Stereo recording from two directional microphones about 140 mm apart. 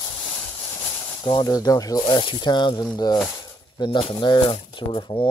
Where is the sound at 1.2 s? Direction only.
30° left (ahead or behind).